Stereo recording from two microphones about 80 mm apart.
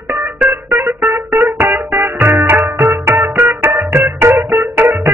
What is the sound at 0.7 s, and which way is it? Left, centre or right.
Music, right.